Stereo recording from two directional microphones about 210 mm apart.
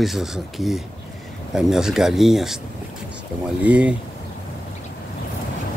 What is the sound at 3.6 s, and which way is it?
Speech, 5° right (ahead or behind).